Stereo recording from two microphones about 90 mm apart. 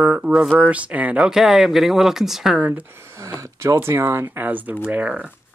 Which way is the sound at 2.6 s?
25° right (ahead or behind).